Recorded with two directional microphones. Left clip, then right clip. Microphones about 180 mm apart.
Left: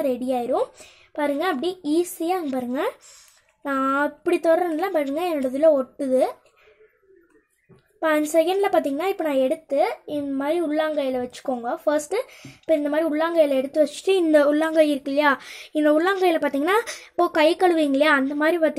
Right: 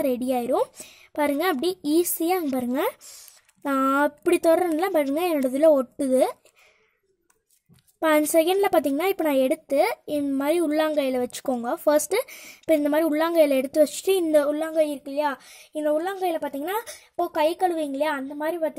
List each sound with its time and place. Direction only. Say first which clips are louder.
0.0 s a woman's voice: left 1 dB; 45° right (ahead or behind)
8.0 s a woman's voice: even; 45° right (ahead or behind); by 18.8 s 15° right (ahead or behind)